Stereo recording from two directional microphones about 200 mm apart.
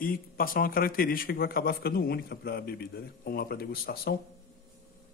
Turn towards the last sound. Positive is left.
turn(degrees=50)  # may be behind; listen again after turning